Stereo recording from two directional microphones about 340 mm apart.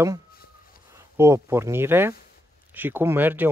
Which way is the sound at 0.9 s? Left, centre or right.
Centre.